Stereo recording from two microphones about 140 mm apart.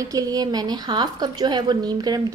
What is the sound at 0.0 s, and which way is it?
A woman's voice, 25° right (ahead or behind).